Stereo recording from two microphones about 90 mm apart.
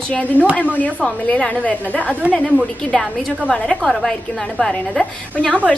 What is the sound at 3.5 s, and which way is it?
A woman's voice, 15° left (ahead or behind).